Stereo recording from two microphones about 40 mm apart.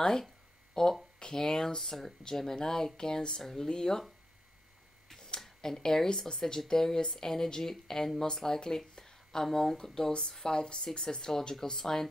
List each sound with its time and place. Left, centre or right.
0.0 s speech: centre
5.1 s speech: centre